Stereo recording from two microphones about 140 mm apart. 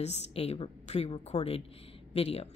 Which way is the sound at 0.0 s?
50° left (ahead or behind).